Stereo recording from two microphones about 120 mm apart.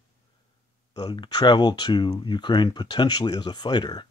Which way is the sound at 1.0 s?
35° left (ahead or behind).